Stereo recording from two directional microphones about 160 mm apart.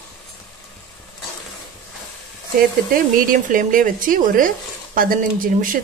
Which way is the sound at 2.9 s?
60° right (ahead or behind).